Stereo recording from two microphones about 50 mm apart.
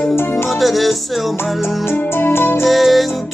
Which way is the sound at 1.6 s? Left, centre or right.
Left.